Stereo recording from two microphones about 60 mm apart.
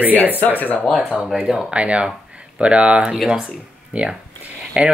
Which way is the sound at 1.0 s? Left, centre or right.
Centre.